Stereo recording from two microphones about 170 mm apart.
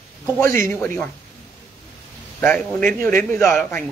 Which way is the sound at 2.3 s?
10° left (ahead or behind).